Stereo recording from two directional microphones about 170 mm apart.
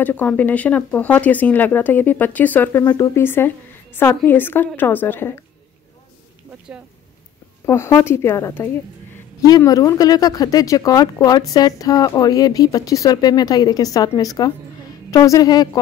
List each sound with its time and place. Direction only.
0.0 s speech: 10° left (ahead or behind)
7.6 s speech: 15° left (ahead or behind)